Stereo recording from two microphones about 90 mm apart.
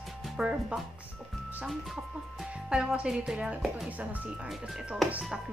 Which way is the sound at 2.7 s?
10° right (ahead or behind).